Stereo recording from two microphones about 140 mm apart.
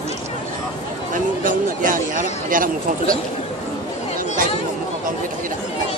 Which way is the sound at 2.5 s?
75° right (ahead or behind).